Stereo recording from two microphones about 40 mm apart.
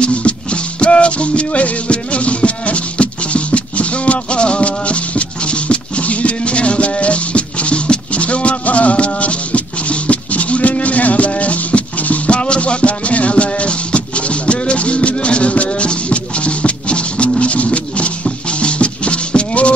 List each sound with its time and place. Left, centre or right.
0.0 s music: left
17.4 s a sound: left
18.5 s music: left